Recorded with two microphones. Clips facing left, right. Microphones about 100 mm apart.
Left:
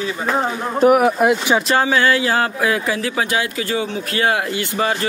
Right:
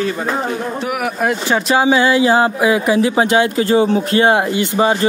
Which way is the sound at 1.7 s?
15° right (ahead or behind).